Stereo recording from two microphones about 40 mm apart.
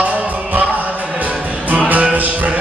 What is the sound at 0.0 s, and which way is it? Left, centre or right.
Music, right.